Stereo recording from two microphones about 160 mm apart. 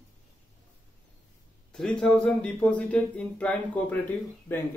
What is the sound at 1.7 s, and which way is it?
Speech, 5° left (ahead or behind).